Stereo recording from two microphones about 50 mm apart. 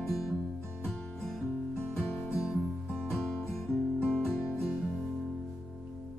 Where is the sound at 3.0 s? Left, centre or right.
Centre.